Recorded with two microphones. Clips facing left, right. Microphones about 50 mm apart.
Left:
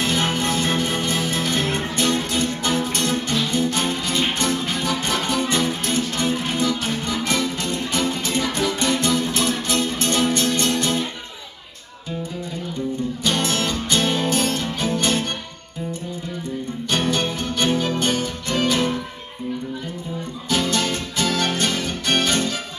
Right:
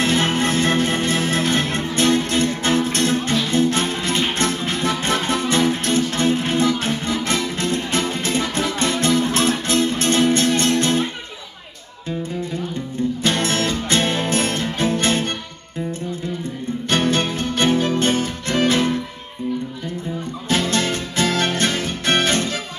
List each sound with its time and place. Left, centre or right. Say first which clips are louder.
0.0 s music: right 3 dB; right
13.2 s music: right 1 dB; right
16.9 s music: right 3 dB; right
20.4 s music: right 1 dB; right